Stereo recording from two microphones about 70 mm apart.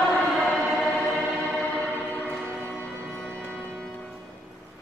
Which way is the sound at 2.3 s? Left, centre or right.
Centre.